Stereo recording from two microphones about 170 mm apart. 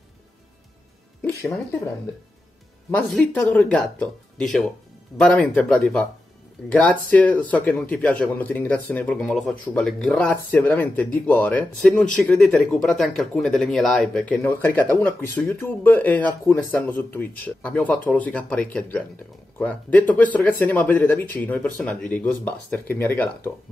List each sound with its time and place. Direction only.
1.2 s speech: 10° left (ahead or behind)
3.4 s speech: 5° left (ahead or behind)